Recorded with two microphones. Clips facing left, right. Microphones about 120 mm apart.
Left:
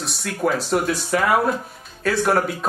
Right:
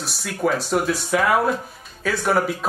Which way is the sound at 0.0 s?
Centre (ahead or behind).